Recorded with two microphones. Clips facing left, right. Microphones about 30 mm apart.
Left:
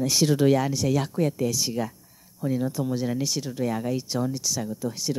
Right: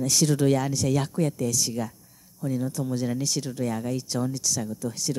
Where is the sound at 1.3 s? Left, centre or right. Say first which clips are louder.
Left 1 dB; centre.